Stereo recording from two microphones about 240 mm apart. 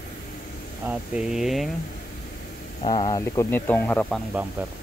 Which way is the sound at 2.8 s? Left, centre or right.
Left.